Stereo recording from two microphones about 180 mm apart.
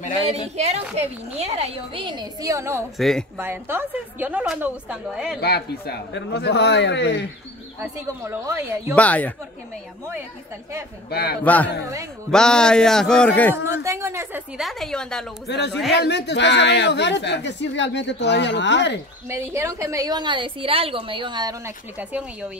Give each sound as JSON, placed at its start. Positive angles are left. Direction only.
{"t": 0.6, "sound": "a woman's voice", "side_deg": -40}
{"t": 3.0, "sound": "a man's voice", "side_deg": 0}
{"t": 3.3, "sound": "a woman's voice", "side_deg": -10}
{"t": 5.4, "sound": "speech", "side_deg": 65}
{"t": 7.8, "sound": "a woman's voice", "side_deg": -15}
{"t": 8.9, "sound": "a woman's voice", "side_deg": 10}
{"t": 11.1, "sound": "a man's voice", "side_deg": 60}
{"t": 11.4, "sound": "a woman's voice", "side_deg": 10}
{"t": 13.7, "sound": "a woman's voice", "side_deg": -15}
{"t": 14.6, "sound": "a man's voice", "side_deg": 0}
{"t": 15.4, "sound": "speech", "side_deg": 70}
{"t": 19.2, "sound": "a woman's voice", "side_deg": -15}
{"t": 21.9, "sound": "a woman's voice", "side_deg": -5}